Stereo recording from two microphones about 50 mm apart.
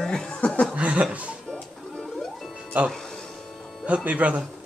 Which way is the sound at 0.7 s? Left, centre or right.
Right.